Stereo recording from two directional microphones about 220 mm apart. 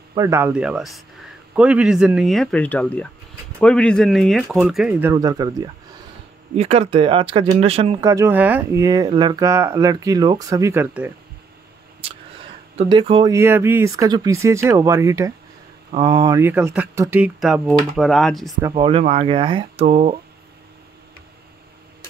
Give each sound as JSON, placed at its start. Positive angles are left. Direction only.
{"t": 0.1, "sound": "speech", "side_deg": -15}
{"t": 5.1, "sound": "speech", "side_deg": -15}
{"t": 6.5, "sound": "speech", "side_deg": -30}
{"t": 8.0, "sound": "speech", "side_deg": -15}
{"t": 12.0, "sound": "speech", "side_deg": -25}
{"t": 18.8, "sound": "speech", "side_deg": -25}